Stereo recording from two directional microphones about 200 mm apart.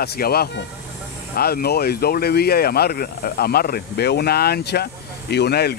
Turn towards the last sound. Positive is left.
turn(degrees=55)  # may be behind; listen again after turning